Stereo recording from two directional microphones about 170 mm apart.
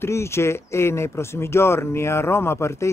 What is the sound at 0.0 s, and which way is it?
Speech, 15° left (ahead or behind).